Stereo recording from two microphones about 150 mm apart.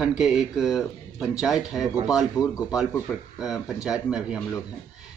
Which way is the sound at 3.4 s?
5° right (ahead or behind).